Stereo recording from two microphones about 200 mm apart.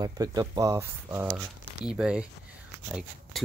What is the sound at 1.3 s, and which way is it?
Speech, 5° right (ahead or behind).